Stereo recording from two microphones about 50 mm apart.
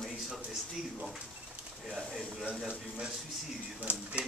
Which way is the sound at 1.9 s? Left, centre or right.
Centre.